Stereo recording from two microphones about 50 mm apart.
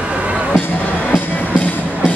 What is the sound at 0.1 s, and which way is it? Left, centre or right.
Music, right.